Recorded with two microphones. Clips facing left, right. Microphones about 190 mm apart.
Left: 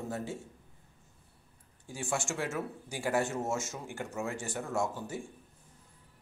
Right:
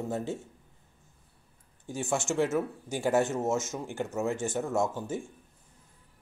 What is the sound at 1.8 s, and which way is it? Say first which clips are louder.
Speech: right 5 dB; 20° right (ahead or behind).